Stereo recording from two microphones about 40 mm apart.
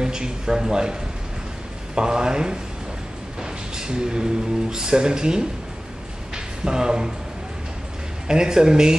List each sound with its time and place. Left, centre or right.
0.0 s speech: centre
2.0 s speech: centre
6.3 s a sound: centre
8.3 s speech: centre